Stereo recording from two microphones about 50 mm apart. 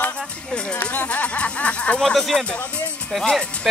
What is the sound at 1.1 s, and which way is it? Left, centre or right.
Speech, left.